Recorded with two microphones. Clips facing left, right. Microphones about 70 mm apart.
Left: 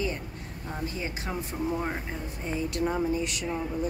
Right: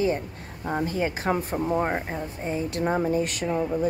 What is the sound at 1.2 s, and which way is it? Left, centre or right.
Speech, right.